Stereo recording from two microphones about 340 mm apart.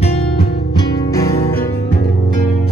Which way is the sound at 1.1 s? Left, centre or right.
Left.